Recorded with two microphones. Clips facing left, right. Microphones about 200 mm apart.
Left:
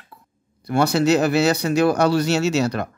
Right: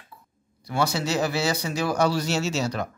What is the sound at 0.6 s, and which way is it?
Speech, 60° left (ahead or behind).